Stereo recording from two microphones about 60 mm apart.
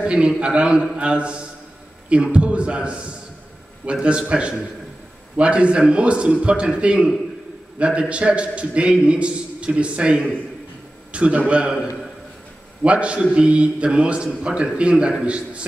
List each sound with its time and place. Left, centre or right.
0.0 s a man's voice: centre
12.8 s a man's voice: centre